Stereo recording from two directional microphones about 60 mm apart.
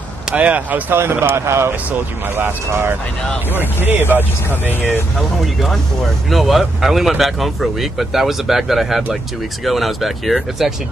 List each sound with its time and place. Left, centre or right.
0.3 s speech: right
1.3 s speech: right
4.0 s speech: left
5.4 s speech: centre